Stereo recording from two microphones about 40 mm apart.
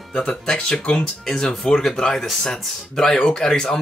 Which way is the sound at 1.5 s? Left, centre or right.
Centre.